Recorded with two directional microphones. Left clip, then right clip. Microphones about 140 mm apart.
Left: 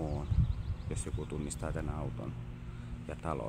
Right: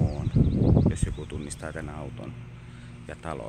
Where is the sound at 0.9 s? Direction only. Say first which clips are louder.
Right 4 dB; 10° right (ahead or behind).